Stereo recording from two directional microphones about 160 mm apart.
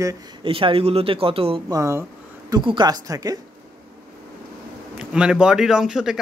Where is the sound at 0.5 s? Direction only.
35° right (ahead or behind).